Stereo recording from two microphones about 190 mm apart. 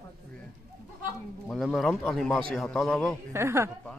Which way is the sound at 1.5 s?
Centre (ahead or behind).